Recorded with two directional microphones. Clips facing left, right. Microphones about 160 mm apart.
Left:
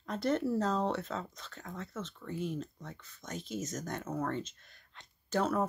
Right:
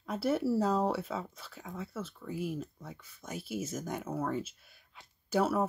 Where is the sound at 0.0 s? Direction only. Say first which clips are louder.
Right 1 dB; 5° right (ahead or behind).